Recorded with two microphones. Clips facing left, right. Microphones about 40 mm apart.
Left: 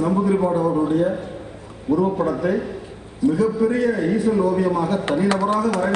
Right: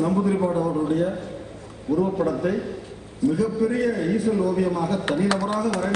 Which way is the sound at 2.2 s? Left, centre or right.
Left.